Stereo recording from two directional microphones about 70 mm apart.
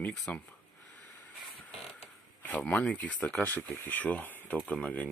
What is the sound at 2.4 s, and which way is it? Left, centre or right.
Speech, left.